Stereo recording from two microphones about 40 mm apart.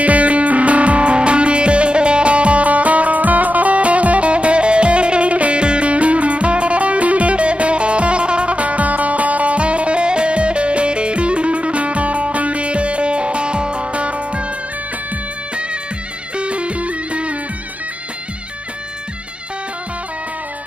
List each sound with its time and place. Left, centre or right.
0.0 s music: right
16.3 s music: right